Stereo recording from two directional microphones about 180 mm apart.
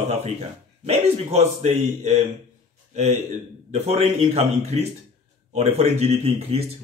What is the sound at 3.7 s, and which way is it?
A man's voice, 35° right (ahead or behind).